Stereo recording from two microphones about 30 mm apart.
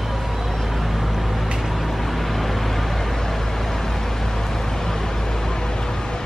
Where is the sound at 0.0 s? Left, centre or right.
Centre.